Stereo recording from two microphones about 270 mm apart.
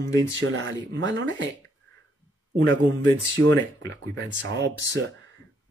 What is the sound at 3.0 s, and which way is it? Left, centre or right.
Speech, centre.